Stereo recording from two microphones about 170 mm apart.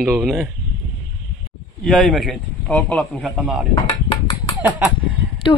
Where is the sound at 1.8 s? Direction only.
Centre (ahead or behind).